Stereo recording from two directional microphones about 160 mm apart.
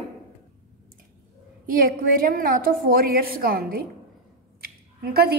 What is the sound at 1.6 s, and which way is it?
A woman's voice, 65° right (ahead or behind).